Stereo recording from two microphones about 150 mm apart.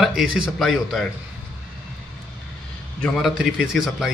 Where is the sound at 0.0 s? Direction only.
Centre (ahead or behind).